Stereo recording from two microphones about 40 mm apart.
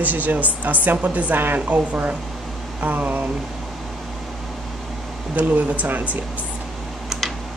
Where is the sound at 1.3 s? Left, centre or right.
Right.